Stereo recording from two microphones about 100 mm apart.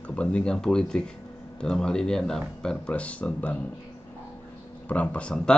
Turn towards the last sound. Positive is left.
turn(degrees=10)  # may be behind; listen again after turning